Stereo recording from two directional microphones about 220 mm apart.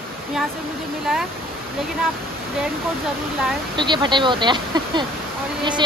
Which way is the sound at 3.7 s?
20° right (ahead or behind).